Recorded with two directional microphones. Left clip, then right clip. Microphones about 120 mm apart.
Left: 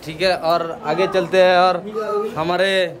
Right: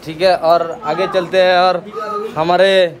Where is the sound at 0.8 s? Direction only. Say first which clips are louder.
Right 2 dB; 20° left (ahead or behind).